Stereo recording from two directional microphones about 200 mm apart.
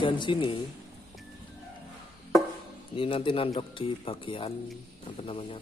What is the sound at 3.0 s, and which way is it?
Speech, 25° left (ahead or behind).